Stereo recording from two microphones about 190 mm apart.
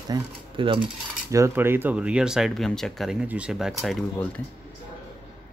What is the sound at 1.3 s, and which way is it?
Speech, 15° right (ahead or behind).